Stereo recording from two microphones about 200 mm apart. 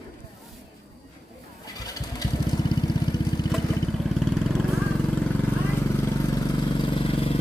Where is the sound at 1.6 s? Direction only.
20° left (ahead or behind).